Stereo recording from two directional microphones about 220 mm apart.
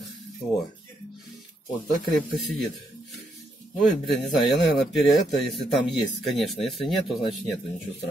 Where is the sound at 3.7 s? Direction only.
Centre (ahead or behind).